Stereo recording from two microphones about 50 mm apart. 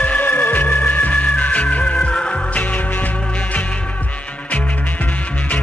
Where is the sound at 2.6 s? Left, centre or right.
Left.